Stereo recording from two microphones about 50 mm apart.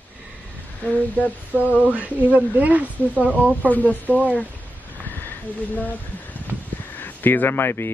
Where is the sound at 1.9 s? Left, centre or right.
Right.